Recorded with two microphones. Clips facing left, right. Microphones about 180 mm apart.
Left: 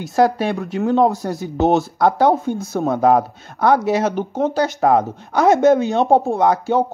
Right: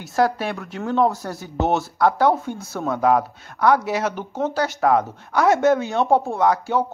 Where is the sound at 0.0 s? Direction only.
15° left (ahead or behind).